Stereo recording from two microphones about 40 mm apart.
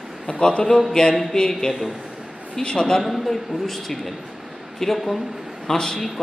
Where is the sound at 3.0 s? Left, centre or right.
Centre.